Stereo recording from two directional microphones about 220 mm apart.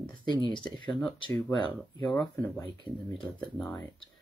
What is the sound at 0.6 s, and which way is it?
Speech, 20° left (ahead or behind).